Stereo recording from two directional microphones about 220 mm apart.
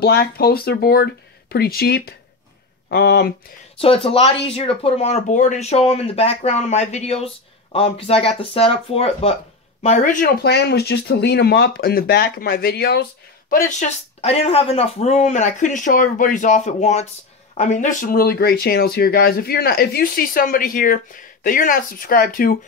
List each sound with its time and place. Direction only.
0.0 s speech: 45° left (ahead or behind)
3.8 s speech: 25° left (ahead or behind); by 13.0 s 45° left (ahead or behind)
13.7 s speech: 30° left (ahead or behind)